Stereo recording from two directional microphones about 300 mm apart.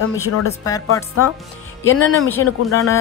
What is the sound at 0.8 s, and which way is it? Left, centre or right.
Speech, left.